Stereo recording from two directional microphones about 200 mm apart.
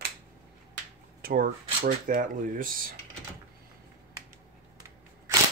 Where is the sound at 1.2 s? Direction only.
45° right (ahead or behind).